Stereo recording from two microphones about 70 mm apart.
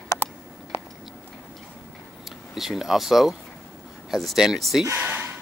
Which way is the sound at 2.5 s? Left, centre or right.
Centre.